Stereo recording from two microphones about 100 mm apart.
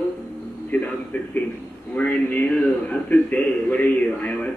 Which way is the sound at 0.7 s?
15° left (ahead or behind).